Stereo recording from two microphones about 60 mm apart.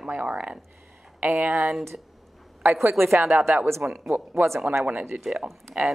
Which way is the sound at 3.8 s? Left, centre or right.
Centre.